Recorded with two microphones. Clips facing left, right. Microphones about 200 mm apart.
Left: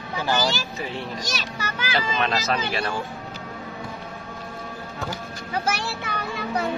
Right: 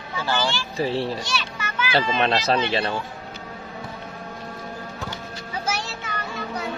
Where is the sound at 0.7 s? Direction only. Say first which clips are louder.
Right 7 dB; 30° right (ahead or behind).